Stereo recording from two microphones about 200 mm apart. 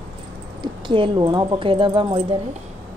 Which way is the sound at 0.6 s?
25° right (ahead or behind).